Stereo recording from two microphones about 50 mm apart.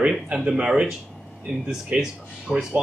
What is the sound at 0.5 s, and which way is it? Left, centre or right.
Speech, centre.